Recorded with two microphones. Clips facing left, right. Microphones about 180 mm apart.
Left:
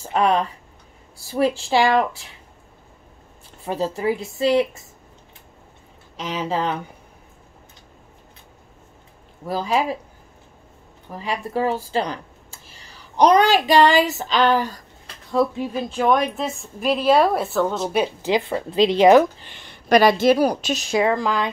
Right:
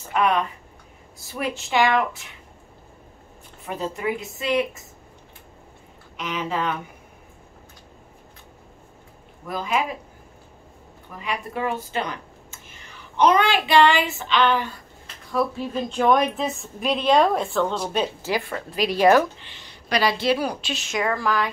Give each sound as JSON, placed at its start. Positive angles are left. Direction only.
{"t": 0.0, "sound": "speech", "side_deg": 35}
{"t": 3.6, "sound": "speech", "side_deg": 30}
{"t": 6.1, "sound": "speech", "side_deg": 35}
{"t": 9.5, "sound": "speech", "side_deg": 30}
{"t": 11.1, "sound": "speech", "side_deg": 30}
{"t": 15.3, "sound": "speech", "side_deg": 15}
{"t": 15.9, "sound": "a woman's voice", "side_deg": 0}
{"t": 19.4, "sound": "a woman's voice", "side_deg": 55}
{"t": 21.0, "sound": "a woman's voice", "side_deg": 20}